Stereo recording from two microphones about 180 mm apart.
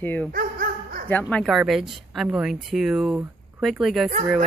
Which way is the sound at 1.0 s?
10° left (ahead or behind).